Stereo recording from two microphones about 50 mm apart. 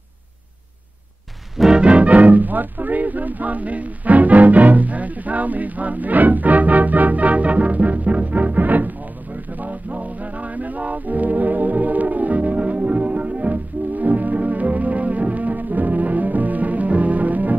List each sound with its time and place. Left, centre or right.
1.8 s music: right